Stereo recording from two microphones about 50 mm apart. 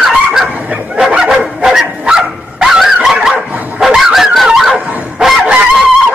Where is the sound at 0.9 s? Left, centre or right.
Centre.